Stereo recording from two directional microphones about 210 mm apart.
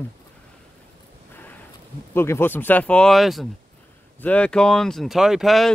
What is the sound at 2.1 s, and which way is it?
Speech, 10° left (ahead or behind).